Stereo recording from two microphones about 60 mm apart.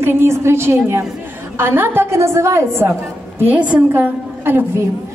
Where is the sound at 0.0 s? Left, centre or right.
Right.